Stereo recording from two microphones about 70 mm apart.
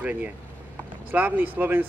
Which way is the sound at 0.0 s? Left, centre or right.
Right.